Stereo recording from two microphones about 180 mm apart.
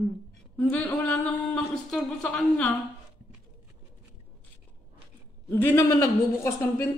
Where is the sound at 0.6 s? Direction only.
10° left (ahead or behind).